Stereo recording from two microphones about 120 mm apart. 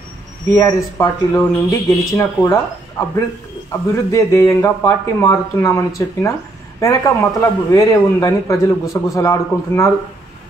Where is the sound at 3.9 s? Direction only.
25° left (ahead or behind).